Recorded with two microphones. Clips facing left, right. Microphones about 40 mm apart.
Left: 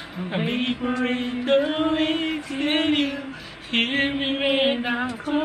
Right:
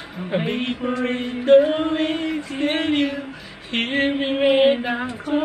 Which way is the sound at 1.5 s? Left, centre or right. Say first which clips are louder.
Right 5 dB; centre.